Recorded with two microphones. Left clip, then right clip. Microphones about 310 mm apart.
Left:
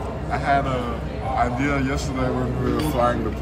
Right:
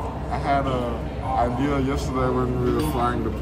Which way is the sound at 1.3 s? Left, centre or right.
Centre.